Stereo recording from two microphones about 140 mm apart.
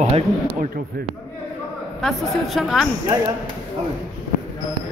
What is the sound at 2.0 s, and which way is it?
Speech, centre (ahead or behind).